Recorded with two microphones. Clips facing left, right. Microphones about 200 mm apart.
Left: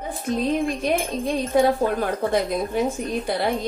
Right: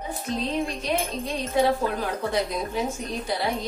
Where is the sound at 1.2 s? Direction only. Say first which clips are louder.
Left 4 dB; 50° left (ahead or behind).